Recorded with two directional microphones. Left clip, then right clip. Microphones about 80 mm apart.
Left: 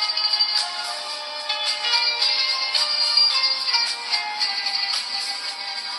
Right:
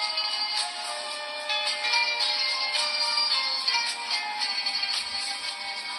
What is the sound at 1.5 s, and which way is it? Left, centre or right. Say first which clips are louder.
Music: left 3 dB; left.